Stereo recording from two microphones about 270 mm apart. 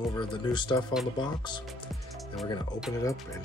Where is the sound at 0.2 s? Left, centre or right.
Centre.